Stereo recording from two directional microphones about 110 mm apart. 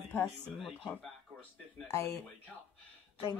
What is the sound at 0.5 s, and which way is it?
Speech, centre (ahead or behind).